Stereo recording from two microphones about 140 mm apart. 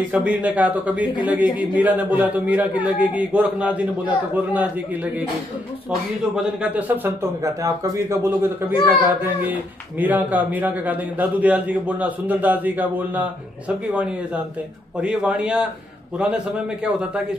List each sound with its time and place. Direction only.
0.1 s speech: 10° right (ahead or behind)
6.3 s speech: 10° right (ahead or behind)
7.4 s a man's voice: 25° right (ahead or behind); by 15.7 s 5° right (ahead or behind)